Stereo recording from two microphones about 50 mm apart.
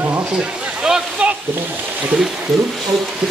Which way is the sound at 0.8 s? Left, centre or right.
Centre.